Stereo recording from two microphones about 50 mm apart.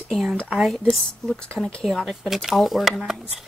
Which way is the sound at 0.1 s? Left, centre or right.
Centre.